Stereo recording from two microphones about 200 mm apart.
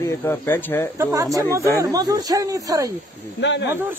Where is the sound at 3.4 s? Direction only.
60° left (ahead or behind).